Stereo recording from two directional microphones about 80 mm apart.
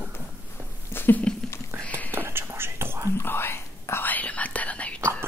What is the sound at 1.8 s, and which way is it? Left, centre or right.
Whispering, centre.